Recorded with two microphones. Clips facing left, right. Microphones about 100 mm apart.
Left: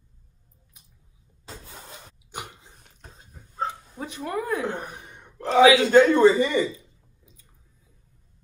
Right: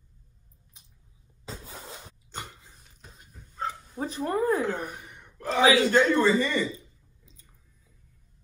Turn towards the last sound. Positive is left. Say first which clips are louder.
# left 4 dB
turn(degrees=15)  # may be behind; listen again after turning